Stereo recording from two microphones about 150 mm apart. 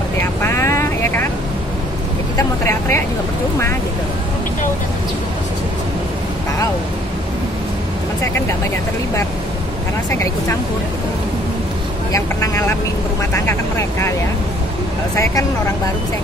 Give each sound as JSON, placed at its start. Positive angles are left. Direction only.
{"t": 0.2, "sound": "vehicle", "side_deg": 15}
{"t": 2.3, "sound": "speech", "side_deg": 20}
{"t": 12.1, "sound": "speech", "side_deg": 20}